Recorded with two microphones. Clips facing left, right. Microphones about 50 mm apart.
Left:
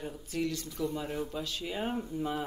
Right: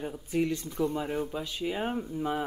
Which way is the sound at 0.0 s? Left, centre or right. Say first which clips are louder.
Right 5 dB; right.